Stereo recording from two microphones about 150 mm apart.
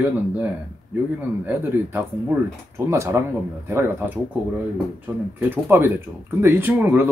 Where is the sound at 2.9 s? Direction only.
20° right (ahead or behind).